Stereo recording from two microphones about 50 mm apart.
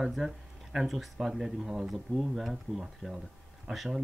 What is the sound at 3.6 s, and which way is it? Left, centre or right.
Speech, centre.